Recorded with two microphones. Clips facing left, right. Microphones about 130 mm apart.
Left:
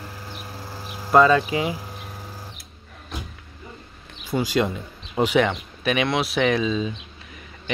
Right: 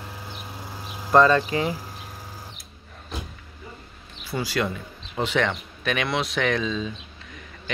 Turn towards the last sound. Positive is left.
turn(degrees=5)  # may be behind; listen again after turning